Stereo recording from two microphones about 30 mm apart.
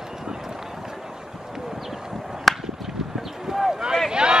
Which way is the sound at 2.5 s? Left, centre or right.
Centre.